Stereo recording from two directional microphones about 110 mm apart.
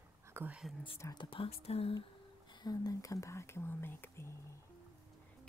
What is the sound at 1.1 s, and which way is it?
Speech, 50° left (ahead or behind).